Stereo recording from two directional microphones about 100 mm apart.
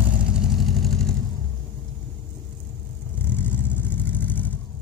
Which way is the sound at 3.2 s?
20° left (ahead or behind).